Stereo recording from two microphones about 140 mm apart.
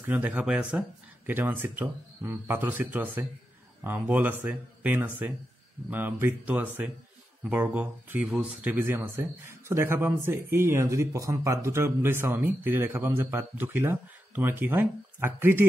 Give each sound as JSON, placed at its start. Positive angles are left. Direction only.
{"t": 0.0, "sound": "speech", "side_deg": -10}